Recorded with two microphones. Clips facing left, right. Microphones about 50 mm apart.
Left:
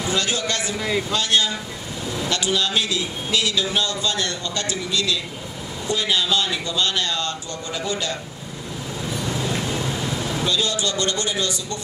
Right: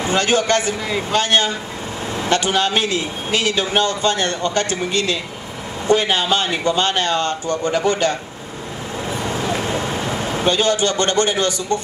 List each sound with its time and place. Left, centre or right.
0.0 s a man's voice: right
0.7 s a man's voice: centre
1.1 s a man's voice: right
9.1 s vehicle: right